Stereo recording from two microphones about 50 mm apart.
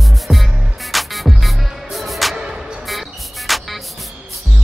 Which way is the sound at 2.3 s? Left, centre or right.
Centre.